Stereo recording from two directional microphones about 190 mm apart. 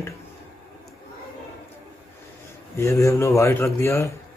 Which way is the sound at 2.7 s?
15° left (ahead or behind).